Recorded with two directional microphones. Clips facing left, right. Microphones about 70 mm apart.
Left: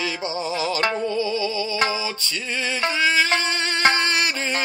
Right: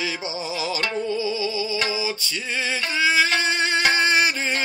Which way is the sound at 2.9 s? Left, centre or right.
Centre.